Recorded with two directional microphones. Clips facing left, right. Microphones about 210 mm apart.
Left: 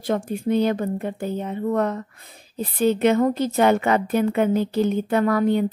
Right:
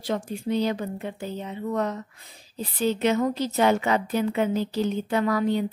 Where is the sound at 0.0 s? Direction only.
50° left (ahead or behind).